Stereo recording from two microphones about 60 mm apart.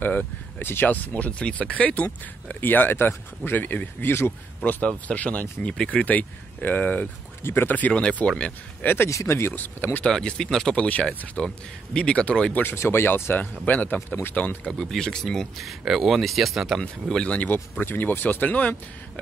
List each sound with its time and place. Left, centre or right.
0.0 s speech: left
2.4 s speech: left
7.9 s speech: centre
8.8 s speech: left
9.1 s speech: left
9.5 s speech: left
10.0 s speech: centre
12.7 s speech: left
14.3 s speech: left
14.7 s speech: centre
17.1 s speech: centre